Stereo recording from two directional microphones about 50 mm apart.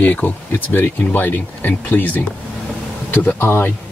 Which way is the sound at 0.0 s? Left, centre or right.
Left.